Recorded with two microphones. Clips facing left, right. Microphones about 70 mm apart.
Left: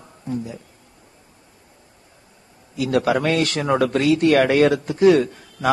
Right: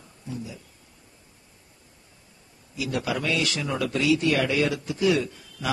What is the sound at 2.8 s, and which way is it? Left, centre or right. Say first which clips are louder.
A man's voice: left 9 dB; left.